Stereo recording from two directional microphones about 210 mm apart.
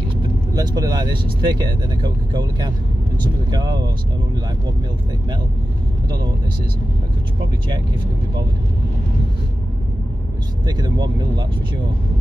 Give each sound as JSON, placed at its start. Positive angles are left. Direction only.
{"t": 0.6, "sound": "speech", "side_deg": -20}
{"t": 10.7, "sound": "speech", "side_deg": -20}